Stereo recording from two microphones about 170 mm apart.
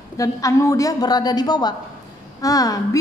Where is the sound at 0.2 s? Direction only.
20° left (ahead or behind).